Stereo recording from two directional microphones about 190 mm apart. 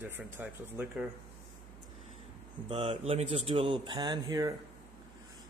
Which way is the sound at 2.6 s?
30° right (ahead or behind).